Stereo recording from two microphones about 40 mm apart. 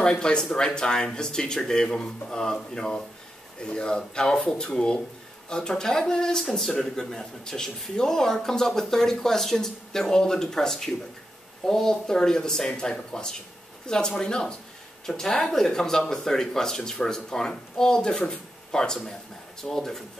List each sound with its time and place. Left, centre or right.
0.2 s a man's voice: centre
6.5 s a man's voice: centre